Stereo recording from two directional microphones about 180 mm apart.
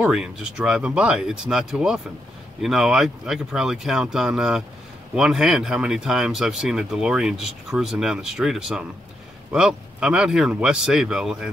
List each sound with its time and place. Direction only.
0.0 s speech: 5° right (ahead or behind)